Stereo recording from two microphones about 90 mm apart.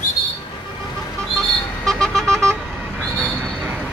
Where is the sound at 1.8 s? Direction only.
5° left (ahead or behind).